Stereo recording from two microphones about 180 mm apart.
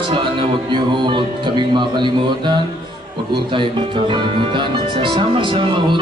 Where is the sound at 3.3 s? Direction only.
25° right (ahead or behind).